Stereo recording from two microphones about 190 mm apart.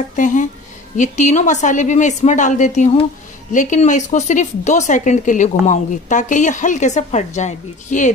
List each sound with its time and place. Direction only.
0.1 s speech: 40° left (ahead or behind)